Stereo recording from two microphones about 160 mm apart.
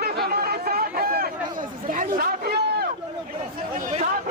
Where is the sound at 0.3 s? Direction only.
75° right (ahead or behind).